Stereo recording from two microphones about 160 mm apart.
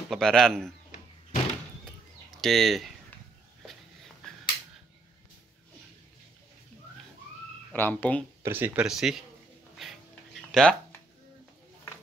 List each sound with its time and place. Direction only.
0.1 s speech: 5° left (ahead or behind)
0.9 s door: 50° left (ahead or behind)
2.4 s speech: centre (ahead or behind)
4.2 s finger snapping: 5° left (ahead or behind)
7.7 s speech: 10° left (ahead or behind)
8.4 s speech: 15° right (ahead or behind)
9.8 s a sound: centre (ahead or behind)
10.5 s speech: 5° left (ahead or behind)